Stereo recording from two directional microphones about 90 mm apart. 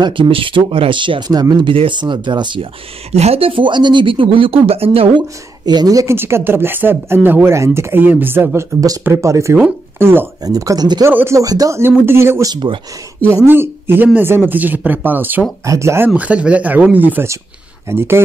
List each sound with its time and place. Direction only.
0.0 s speech: 75° right (ahead or behind)
1.3 s speech: 45° right (ahead or behind)
1.7 s speech: 65° right (ahead or behind)
3.3 s speech: 80° right
5.7 s speech: 45° right (ahead or behind)
6.1 s speech: 25° right (ahead or behind)
10.4 s speech: 40° right (ahead or behind)
11.1 s speech: 30° right (ahead or behind)
11.4 s speech: 45° right (ahead or behind)
12.1 s speech: 30° right (ahead or behind)
12.4 s speech: 60° right (ahead or behind)
13.5 s speech: 25° right (ahead or behind)
15.6 s speech: 35° right (ahead or behind)
16.2 s speech: 15° right (ahead or behind)